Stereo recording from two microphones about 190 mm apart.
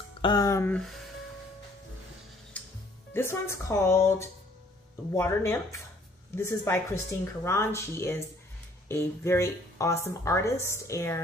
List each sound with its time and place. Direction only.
0.2 s a sound: 20° left (ahead or behind)
0.7 s speech: centre (ahead or behind)
3.1 s speech: 10° left (ahead or behind)